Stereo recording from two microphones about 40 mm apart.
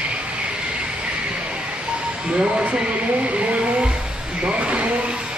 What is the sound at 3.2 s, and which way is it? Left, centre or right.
Vehicle, right.